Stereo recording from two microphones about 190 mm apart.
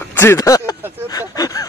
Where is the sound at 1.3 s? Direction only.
20° left (ahead or behind).